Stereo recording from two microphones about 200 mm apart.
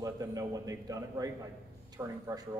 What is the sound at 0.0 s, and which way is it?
A man's voice, 15° right (ahead or behind).